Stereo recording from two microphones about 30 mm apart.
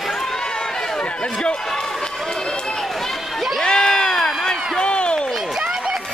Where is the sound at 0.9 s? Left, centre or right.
Left.